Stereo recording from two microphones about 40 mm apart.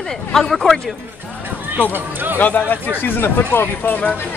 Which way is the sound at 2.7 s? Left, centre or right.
Left.